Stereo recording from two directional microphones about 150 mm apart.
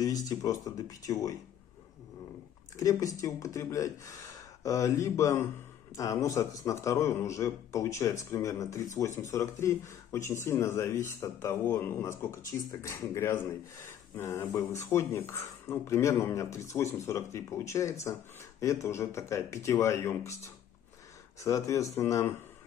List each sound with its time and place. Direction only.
0.0 s speech: 25° left (ahead or behind)
2.8 s speech: 25° left (ahead or behind)